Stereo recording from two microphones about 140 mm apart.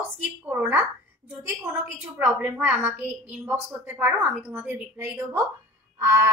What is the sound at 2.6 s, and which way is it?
A woman's voice, 15° right (ahead or behind).